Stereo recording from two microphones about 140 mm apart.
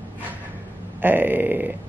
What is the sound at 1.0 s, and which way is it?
Speech, 15° right (ahead or behind).